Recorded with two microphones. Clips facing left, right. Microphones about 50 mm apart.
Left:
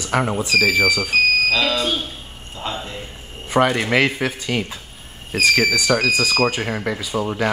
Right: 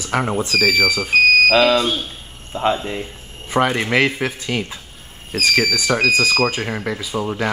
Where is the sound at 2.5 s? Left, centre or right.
Right.